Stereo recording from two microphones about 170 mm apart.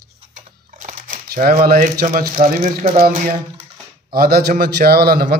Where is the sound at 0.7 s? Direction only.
45° right (ahead or behind).